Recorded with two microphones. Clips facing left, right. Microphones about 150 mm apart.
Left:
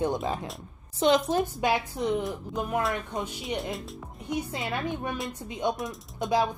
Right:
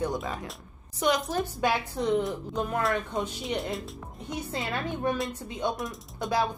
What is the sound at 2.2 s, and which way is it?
Speech, 5° left (ahead or behind).